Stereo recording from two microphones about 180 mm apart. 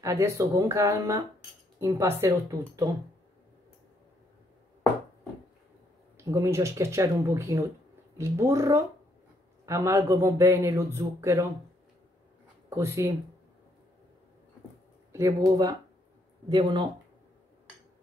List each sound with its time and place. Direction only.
0.0 s speech: 15° right (ahead or behind)
6.1 s speech: 15° right (ahead or behind)
12.6 s speech: 15° right (ahead or behind)
15.1 s speech: 20° right (ahead or behind)